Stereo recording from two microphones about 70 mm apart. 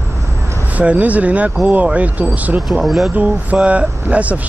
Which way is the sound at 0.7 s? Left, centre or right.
Right.